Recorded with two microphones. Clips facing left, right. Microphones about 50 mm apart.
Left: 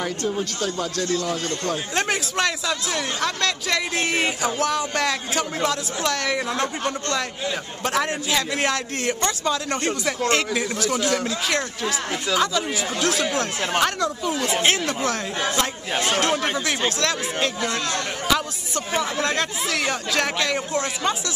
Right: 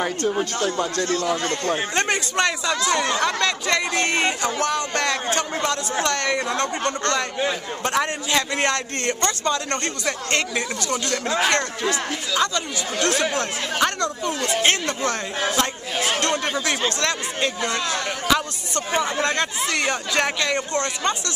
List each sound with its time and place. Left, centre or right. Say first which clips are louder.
0.3 s speech: right 3 dB; right
2.0 s a man's voice: left 1 dB; centre
17.0 s a man's voice: even; centre